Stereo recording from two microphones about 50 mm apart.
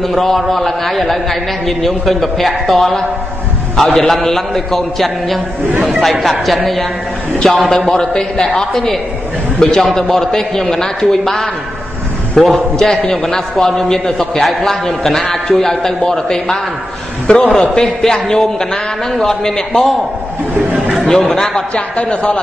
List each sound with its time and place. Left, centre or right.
0.0 s a man's voice: centre
21.1 s a man's voice: centre
21.9 s a man's voice: left